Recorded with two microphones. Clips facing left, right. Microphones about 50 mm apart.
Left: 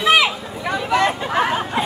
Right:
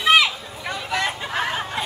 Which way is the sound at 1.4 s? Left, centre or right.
Centre.